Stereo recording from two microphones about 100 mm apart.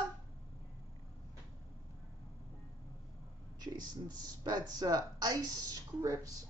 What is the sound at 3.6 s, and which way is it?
Speech, 45° right (ahead or behind).